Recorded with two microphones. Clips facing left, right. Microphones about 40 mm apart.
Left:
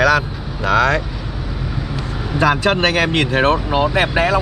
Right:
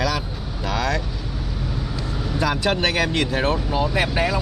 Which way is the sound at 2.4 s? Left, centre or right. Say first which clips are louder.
Left 6 dB; left.